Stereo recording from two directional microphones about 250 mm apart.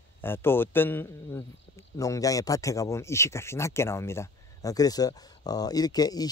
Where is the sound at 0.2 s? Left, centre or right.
Centre.